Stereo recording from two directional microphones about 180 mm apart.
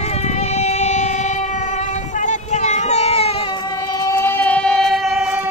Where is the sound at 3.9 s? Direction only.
15° left (ahead or behind); by 5.4 s centre (ahead or behind).